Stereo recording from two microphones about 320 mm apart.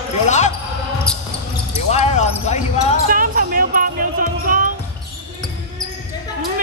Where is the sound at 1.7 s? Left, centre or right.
Left.